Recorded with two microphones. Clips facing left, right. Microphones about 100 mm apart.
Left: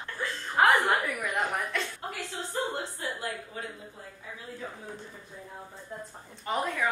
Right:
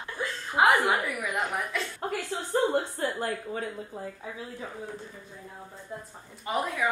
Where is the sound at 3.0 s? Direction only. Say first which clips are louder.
Right 6 dB; 50° right (ahead or behind).